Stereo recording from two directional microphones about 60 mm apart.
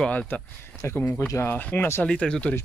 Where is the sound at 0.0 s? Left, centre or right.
Centre.